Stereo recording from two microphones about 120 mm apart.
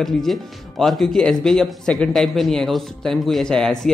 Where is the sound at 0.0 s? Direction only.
Centre (ahead or behind).